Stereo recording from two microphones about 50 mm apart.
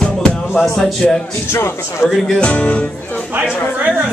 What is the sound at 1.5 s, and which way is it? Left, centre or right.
Speech, left.